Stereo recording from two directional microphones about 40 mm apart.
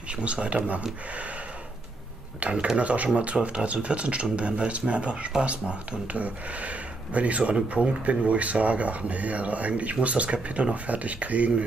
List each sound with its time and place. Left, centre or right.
0.1 s speech: right
2.4 s speech: right